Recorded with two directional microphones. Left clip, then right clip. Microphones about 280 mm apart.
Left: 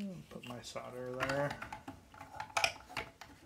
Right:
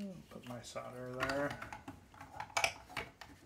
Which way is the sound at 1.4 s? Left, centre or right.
Centre.